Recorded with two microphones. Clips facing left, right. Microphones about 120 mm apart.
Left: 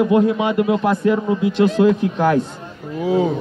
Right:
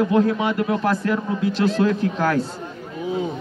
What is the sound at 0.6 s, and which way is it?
Speech, 15° left (ahead or behind).